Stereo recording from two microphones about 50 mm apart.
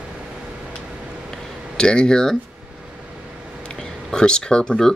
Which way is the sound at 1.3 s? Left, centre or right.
Centre.